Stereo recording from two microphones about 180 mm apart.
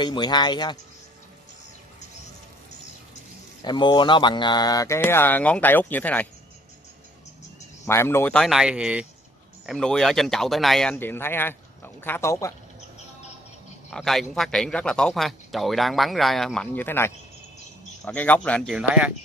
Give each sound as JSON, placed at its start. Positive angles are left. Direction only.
{"t": 0.0, "sound": "speech", "side_deg": 25}
{"t": 3.6, "sound": "speech", "side_deg": 25}
{"t": 7.8, "sound": "a man's voice", "side_deg": 15}
{"t": 13.8, "sound": "a man's voice", "side_deg": 0}